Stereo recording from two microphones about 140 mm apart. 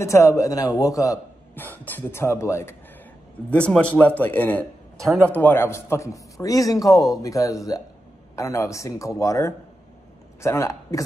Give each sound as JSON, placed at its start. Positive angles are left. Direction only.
{"t": 0.0, "sound": "a man's voice", "side_deg": 20}
{"t": 1.6, "sound": "speech", "side_deg": 15}
{"t": 3.4, "sound": "a man's voice", "side_deg": 10}